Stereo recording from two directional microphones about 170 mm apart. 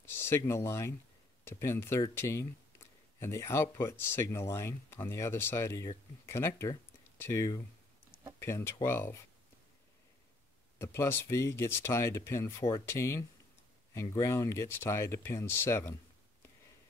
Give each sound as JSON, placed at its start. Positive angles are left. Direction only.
{"t": 0.2, "sound": "speech", "side_deg": 15}
{"t": 10.8, "sound": "speech", "side_deg": 15}